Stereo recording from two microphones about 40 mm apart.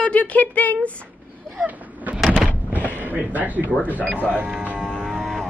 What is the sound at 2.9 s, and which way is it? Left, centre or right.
Speech, right.